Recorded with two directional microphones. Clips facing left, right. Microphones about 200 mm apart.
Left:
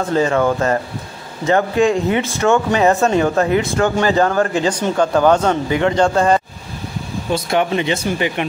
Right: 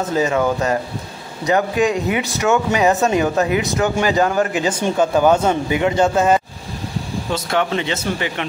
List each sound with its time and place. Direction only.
0.0 s a man's voice: 5° right (ahead or behind)
2.5 s a man's voice: 5° right (ahead or behind)
7.3 s speech: 15° left (ahead or behind)